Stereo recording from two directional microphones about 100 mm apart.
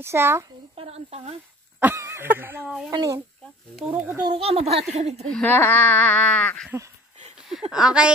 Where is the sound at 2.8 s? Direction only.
35° right (ahead or behind).